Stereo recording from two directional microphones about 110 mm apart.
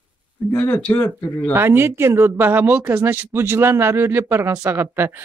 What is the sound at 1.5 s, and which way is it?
Speech, 20° right (ahead or behind).